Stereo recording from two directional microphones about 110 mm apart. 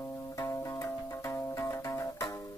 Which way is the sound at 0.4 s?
30° left (ahead or behind).